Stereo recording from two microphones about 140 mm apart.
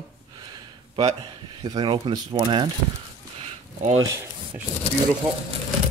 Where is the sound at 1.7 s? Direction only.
35° right (ahead or behind).